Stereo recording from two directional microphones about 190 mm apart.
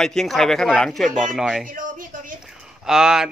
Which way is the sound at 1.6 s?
45° right (ahead or behind).